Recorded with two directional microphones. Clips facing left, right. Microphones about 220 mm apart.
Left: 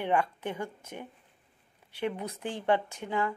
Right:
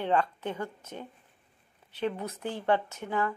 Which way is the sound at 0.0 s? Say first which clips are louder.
Right 1 dB; 15° left (ahead or behind).